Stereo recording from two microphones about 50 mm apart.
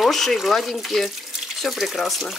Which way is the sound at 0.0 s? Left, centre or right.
Centre.